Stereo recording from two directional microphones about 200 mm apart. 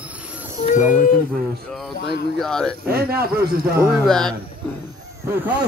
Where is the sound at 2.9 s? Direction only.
50° right (ahead or behind).